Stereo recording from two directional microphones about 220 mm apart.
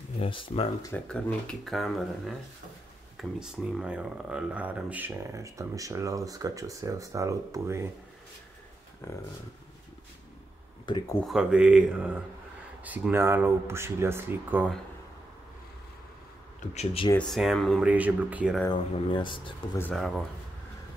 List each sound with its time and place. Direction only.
0.2 s speech: 25° left (ahead or behind)
0.9 s speech: 5° left (ahead or behind); by 7.9 s 10° right (ahead or behind)
9.0 s speech: 10° left (ahead or behind)
11.1 s speech: centre (ahead or behind)
16.7 s speech: 25° left (ahead or behind)
17.1 s speech: 5° left (ahead or behind)
18.7 s speech: 20° left (ahead or behind)
19.8 s speech: 5° left (ahead or behind)